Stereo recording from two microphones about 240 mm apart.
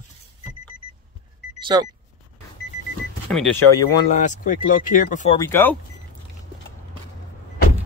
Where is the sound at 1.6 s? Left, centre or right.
Centre.